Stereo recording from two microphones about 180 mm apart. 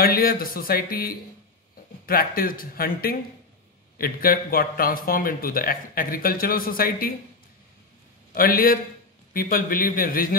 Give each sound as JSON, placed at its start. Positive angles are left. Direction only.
{"t": 0.0, "sound": "speech", "side_deg": 55}
{"t": 8.3, "sound": "a man's voice", "side_deg": 55}